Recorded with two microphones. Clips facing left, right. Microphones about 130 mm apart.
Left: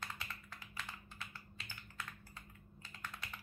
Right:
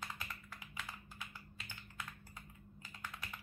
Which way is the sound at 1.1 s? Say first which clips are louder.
Even; 15° right (ahead or behind).